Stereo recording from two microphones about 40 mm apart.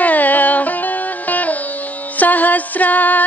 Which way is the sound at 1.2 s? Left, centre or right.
Left.